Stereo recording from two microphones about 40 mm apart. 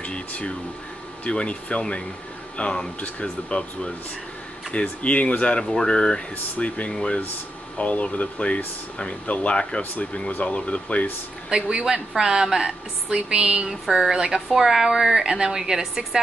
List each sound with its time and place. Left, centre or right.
0.0 s a sound: left
1.2 s speech: left
7.7 s speech: left
11.5 s a woman's voice: right
12.2 s a woman's voice: centre
13.7 s a woman's voice: centre